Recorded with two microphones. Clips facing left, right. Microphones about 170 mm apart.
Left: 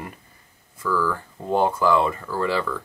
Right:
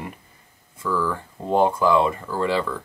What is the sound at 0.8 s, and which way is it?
Speech, 20° right (ahead or behind).